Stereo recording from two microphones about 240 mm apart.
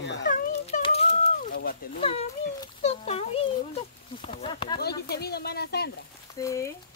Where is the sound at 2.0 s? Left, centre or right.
Left.